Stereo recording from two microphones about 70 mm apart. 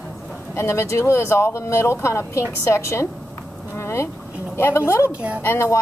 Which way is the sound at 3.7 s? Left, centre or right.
Left.